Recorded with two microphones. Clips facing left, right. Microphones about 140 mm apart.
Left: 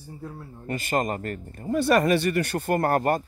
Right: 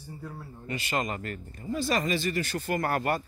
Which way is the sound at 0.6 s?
45° left (ahead or behind).